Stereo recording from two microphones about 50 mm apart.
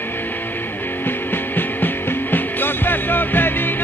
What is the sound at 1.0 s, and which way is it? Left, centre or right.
Music, left.